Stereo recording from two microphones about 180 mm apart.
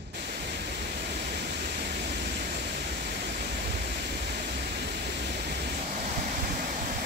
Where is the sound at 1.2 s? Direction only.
65° right (ahead or behind).